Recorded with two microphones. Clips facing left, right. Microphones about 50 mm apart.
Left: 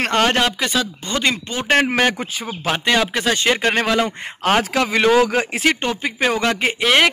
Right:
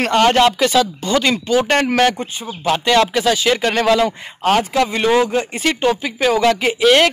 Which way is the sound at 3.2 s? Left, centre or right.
Left.